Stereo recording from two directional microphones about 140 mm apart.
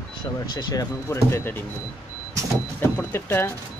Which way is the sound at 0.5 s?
25° left (ahead or behind).